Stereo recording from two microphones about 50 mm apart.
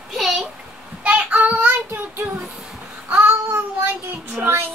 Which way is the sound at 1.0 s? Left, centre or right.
Right.